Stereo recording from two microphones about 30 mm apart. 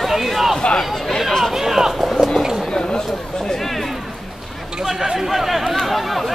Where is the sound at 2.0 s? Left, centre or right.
Centre.